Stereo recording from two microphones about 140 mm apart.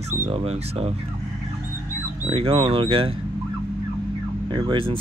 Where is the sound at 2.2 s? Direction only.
45° right (ahead or behind).